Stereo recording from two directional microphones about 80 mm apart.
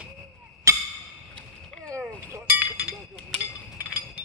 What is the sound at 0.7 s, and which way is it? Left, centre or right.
Music, right.